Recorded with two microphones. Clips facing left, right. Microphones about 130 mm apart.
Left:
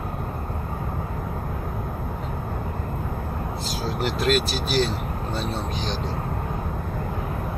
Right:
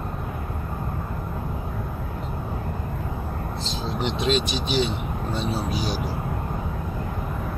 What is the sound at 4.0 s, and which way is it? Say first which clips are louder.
Speech: left 1 dB; 5° left (ahead or behind).